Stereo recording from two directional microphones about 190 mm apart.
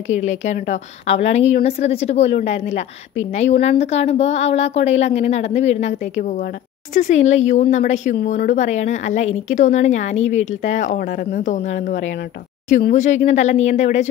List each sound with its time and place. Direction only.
0.2 s a woman's voice: 40° left (ahead or behind)